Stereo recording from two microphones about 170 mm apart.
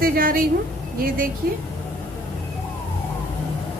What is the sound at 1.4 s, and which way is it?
Speech, 65° right (ahead or behind).